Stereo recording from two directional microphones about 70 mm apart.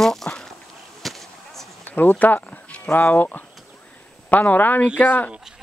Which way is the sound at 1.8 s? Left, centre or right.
Left.